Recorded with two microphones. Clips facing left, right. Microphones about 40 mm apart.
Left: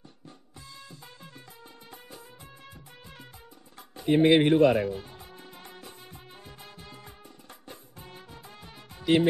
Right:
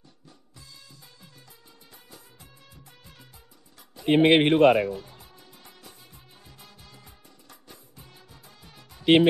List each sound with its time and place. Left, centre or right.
4.0 s speech: right
6.4 s music: left
9.0 s speech: right